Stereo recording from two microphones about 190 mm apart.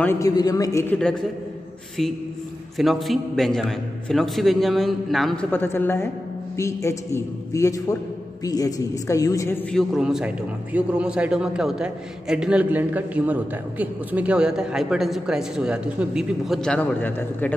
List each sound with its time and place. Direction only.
0.0 s a man's voice: 15° left (ahead or behind)
2.8 s a man's voice: centre (ahead or behind); by 9.6 s 15° left (ahead or behind)
9.7 s a man's voice: centre (ahead or behind)